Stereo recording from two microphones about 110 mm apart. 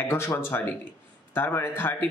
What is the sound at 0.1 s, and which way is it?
Speech, 20° left (ahead or behind).